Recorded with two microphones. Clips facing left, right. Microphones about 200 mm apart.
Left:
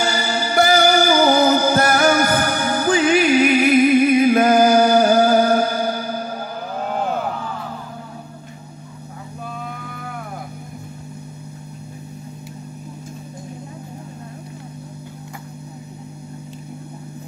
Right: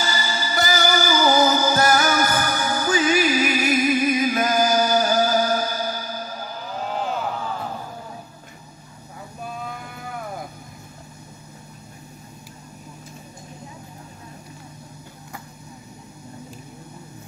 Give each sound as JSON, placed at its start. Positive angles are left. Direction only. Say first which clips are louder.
{"t": 0.0, "sound": "music", "louder": "left 6 dB", "side_deg": 60}